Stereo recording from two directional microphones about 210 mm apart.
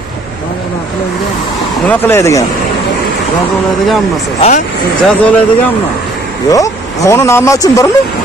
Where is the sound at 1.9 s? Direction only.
10° left (ahead or behind).